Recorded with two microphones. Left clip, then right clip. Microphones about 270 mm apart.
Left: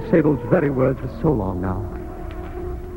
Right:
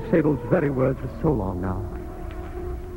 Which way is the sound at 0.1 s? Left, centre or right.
Right.